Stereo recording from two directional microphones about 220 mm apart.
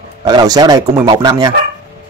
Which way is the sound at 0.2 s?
15° right (ahead or behind).